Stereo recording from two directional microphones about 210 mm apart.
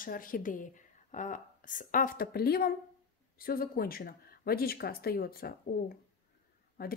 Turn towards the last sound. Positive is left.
turn(degrees=45)  # may be behind; listen again after turning